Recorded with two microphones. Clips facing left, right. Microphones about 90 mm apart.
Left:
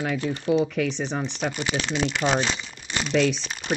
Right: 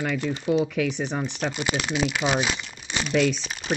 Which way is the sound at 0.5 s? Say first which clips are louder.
Left 1 dB; centre (ahead or behind).